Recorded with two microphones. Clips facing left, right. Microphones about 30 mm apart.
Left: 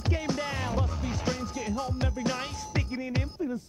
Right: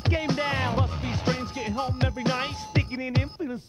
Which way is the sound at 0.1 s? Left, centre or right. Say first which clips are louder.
Right 5 dB; right.